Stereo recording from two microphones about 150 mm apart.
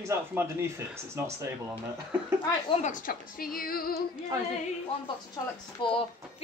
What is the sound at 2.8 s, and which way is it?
A woman's voice, 70° left (ahead or behind).